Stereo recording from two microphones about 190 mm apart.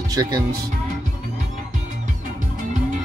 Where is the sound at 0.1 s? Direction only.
20° right (ahead or behind).